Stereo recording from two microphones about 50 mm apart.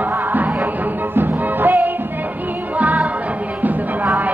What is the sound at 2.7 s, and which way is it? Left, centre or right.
Music, right.